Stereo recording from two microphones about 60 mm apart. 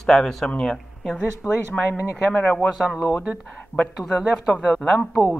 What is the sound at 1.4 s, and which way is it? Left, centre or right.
Speech, left.